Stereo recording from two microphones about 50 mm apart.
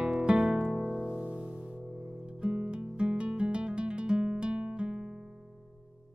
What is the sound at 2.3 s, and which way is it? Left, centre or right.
Guitar, right.